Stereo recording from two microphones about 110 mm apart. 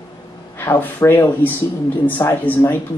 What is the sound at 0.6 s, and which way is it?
Speech, 20° left (ahead or behind).